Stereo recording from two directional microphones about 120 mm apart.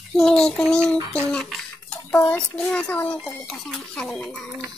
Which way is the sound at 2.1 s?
15° left (ahead or behind).